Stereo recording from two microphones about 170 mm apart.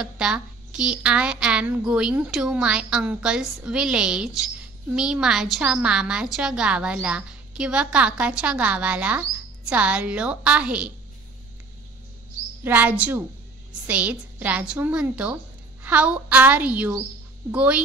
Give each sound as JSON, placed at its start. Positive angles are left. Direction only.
{"t": 0.0, "sound": "a woman's voice", "side_deg": -5}
{"t": 12.6, "sound": "a woman's voice", "side_deg": -10}